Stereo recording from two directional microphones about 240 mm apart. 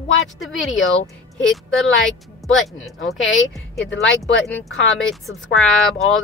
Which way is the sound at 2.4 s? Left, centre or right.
Centre.